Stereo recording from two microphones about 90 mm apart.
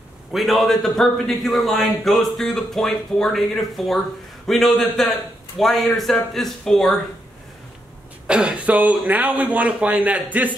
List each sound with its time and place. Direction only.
0.3 s a man's voice: centre (ahead or behind)
8.3 s speech: 10° right (ahead or behind)